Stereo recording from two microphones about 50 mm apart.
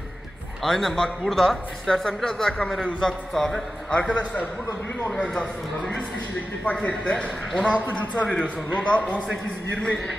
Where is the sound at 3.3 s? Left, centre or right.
Centre.